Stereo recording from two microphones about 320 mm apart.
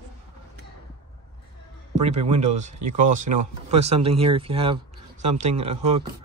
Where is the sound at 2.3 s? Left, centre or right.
Right.